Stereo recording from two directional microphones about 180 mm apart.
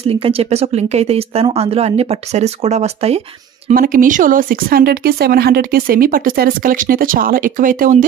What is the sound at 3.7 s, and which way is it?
Speech, 50° right (ahead or behind).